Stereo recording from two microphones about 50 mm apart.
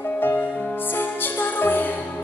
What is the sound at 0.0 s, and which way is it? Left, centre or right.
Music, left.